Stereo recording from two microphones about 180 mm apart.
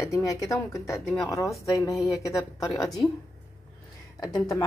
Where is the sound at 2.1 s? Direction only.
20° left (ahead or behind).